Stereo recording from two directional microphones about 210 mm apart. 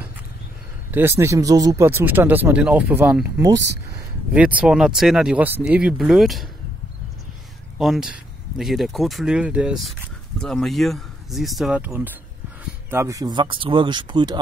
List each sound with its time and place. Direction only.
0.9 s speech: 10° right (ahead or behind)
7.8 s speech: centre (ahead or behind); by 14.4 s 20° right (ahead or behind)